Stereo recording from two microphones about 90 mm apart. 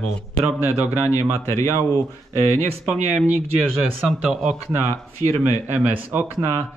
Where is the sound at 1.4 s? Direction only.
35° left (ahead or behind).